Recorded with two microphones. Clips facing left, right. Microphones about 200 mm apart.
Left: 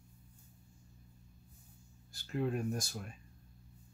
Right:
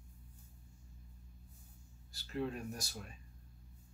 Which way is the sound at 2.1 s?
50° left (ahead or behind).